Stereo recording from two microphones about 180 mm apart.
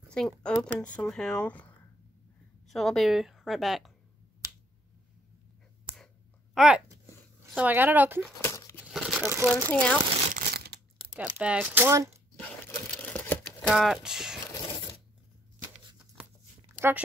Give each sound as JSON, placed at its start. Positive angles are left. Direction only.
{"t": 0.1, "sound": "speech", "side_deg": 5}
{"t": 2.7, "sound": "speech", "side_deg": 0}
{"t": 6.5, "sound": "speech", "side_deg": 0}
{"t": 8.4, "sound": "tearing", "side_deg": 15}
{"t": 8.9, "sound": "crumpling", "side_deg": -5}
{"t": 9.7, "sound": "speech", "side_deg": 5}
{"t": 10.3, "sound": "crumpling", "side_deg": -60}
{"t": 11.1, "sound": "speech", "side_deg": -10}
{"t": 12.4, "sound": "crumpling", "side_deg": 10}
{"t": 13.6, "sound": "speech", "side_deg": 0}